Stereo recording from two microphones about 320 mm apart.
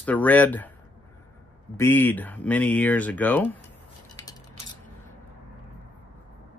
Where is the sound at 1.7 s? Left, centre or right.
Centre.